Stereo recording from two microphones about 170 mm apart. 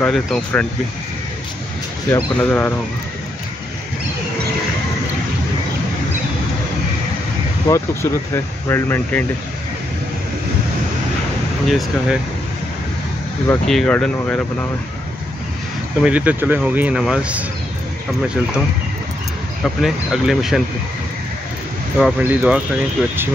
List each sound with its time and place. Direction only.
0.0 s speech: 5° left (ahead or behind)
2.0 s speech: 15° left (ahead or behind)
7.6 s speech: 20° left (ahead or behind)
11.6 s speech: centre (ahead or behind)
13.7 s speech: 5° left (ahead or behind)
16.0 s speech: 5° right (ahead or behind)
19.6 s speech: centre (ahead or behind)
22.2 s speech: 10° right (ahead or behind)